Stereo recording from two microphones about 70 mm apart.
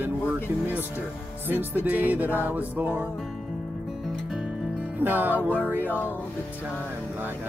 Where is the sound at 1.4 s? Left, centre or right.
Right.